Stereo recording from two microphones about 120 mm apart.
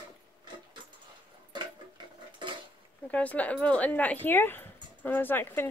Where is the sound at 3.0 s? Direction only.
10° left (ahead or behind).